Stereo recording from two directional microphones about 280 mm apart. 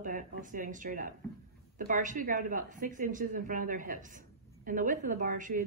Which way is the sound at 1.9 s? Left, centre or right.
Right.